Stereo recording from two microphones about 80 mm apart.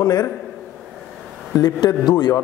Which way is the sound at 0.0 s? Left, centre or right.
Left.